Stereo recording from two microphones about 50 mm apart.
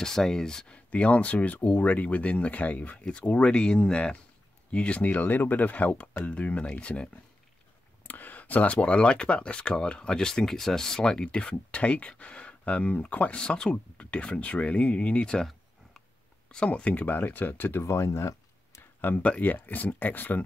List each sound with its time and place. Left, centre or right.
0.0 s speech: centre
0.8 s speech: left
8.1 s speech: left
13.4 s speech: centre
16.4 s speech: left
17.8 s a sound: left
18.8 s a sound: left
19.4 s speech: left